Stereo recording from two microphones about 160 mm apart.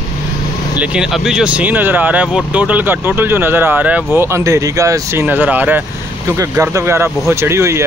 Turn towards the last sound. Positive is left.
turn(degrees=-15)  # may be behind; listen again after turning